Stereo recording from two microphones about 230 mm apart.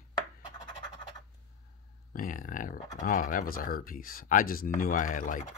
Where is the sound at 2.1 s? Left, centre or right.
Left.